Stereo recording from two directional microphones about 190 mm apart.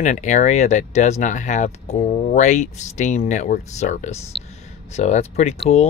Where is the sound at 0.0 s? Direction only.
40° left (ahead or behind).